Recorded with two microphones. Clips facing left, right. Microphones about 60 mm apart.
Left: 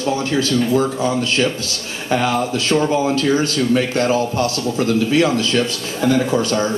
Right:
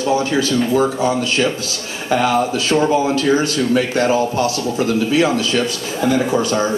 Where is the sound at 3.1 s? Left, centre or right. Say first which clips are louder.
Right 1 dB; right.